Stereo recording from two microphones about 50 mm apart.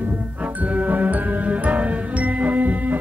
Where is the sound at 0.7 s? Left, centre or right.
Right.